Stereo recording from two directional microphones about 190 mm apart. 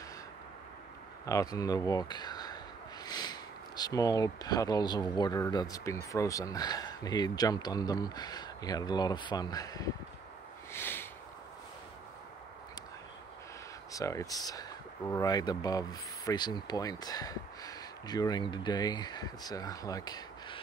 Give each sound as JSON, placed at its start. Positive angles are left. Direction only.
{"t": 1.2, "sound": "speech", "side_deg": 20}
{"t": 10.7, "sound": "a sound", "side_deg": 10}
{"t": 13.9, "sound": "speech", "side_deg": 15}